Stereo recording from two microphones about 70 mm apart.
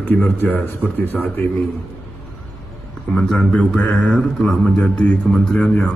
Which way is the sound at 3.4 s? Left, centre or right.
Centre.